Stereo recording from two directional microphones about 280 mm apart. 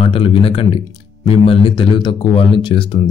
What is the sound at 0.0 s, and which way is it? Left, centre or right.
Speech, centre.